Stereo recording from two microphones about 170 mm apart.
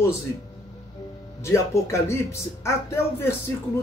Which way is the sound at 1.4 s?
15° left (ahead or behind).